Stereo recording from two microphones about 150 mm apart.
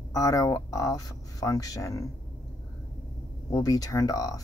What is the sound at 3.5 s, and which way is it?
Speech, 25° left (ahead or behind).